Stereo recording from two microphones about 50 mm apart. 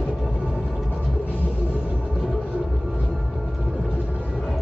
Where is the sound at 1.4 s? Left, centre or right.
Right.